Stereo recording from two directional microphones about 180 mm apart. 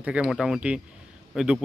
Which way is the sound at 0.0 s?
5° right (ahead or behind).